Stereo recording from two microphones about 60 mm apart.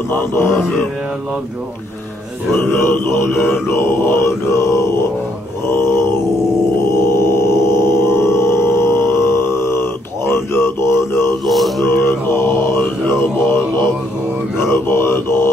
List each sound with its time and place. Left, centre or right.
0.3 s mantra: left
2.5 s mantra: left
6.8 s music: left
11.4 s mantra: centre
11.9 s mantra: left
14.7 s mantra: left